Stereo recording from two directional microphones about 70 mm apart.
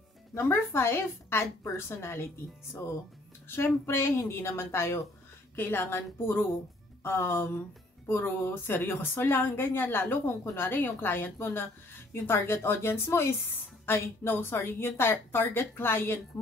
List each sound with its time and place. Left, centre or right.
0.3 s speech: left